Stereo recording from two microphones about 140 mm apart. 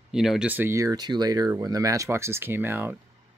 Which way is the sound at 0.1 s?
5° right (ahead or behind).